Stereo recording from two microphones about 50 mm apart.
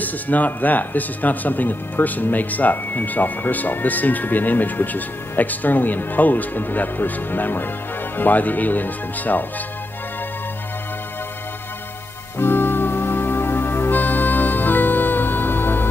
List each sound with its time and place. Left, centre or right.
0.0 s speech: left
12.4 s music: left